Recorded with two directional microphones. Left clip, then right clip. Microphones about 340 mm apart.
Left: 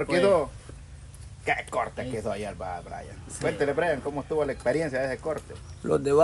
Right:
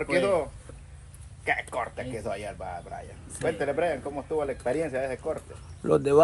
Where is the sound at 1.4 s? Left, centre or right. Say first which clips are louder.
Left 1 dB; left.